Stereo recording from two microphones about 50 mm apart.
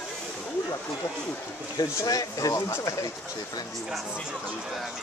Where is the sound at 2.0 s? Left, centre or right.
Left.